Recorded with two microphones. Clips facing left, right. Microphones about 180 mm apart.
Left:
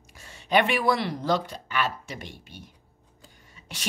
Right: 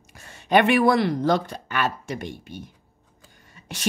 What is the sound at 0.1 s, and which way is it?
A woman's voice, 50° right (ahead or behind).